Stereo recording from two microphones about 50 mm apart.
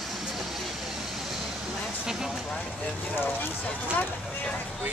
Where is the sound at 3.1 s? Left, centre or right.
Left.